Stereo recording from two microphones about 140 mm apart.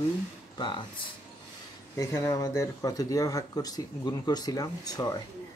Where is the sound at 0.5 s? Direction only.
35° left (ahead or behind).